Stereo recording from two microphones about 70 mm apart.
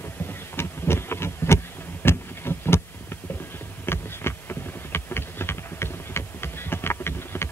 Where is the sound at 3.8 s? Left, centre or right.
Left.